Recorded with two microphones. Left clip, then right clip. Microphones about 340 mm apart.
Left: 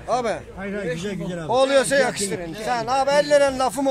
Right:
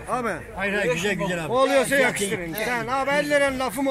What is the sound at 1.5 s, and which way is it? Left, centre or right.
Speech, left.